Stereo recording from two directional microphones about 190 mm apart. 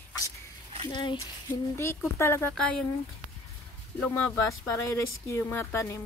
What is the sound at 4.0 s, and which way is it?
Speech, 10° left (ahead or behind).